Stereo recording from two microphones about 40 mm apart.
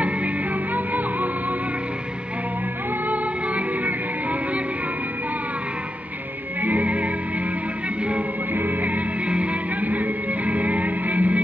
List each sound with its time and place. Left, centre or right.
0.7 s music: right
3.1 s music: right
6.6 s music: right
8.5 s music: right
9.3 s music: right